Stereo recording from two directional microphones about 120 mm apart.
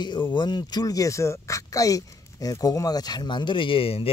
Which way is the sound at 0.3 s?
40° left (ahead or behind).